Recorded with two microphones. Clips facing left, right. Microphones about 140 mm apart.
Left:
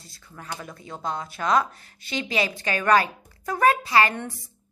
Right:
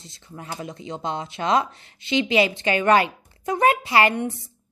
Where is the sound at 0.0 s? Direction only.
25° right (ahead or behind).